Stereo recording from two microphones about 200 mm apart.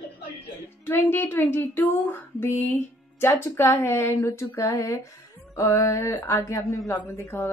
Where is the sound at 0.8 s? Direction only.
10° left (ahead or behind).